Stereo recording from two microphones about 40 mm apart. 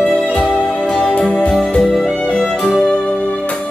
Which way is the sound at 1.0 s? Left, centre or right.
Left.